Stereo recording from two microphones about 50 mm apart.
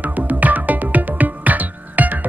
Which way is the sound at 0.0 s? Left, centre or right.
Right.